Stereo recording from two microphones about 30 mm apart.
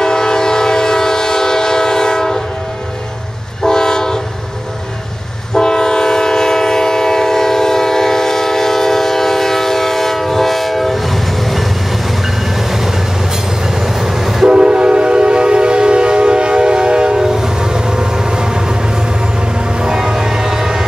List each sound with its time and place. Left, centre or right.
0.0 s train: left
3.6 s train: centre
5.5 s train: left; by 11.6 s centre
12.5 s train: centre
14.4 s train: right
19.8 s train: centre